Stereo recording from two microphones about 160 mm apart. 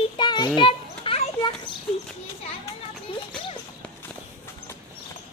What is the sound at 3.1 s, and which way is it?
Children playing, 35° left (ahead or behind).